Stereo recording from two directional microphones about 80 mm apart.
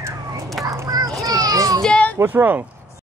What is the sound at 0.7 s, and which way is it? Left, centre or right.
Children playing, right.